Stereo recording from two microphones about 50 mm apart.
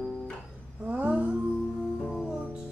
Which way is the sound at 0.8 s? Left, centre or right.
Right.